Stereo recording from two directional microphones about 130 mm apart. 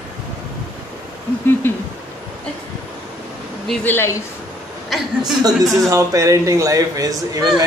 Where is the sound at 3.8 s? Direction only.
15° left (ahead or behind).